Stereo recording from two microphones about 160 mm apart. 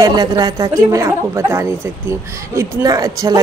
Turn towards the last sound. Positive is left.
turn(degrees=-20)  # may be behind; listen again after turning